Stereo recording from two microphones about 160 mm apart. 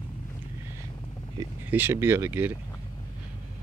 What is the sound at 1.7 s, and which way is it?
Speech, 15° right (ahead or behind).